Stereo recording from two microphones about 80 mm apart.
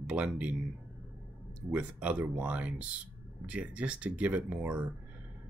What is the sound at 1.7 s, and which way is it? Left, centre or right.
Speech, centre.